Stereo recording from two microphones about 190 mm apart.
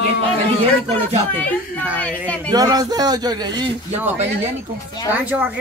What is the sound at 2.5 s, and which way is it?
Speech, 20° right (ahead or behind).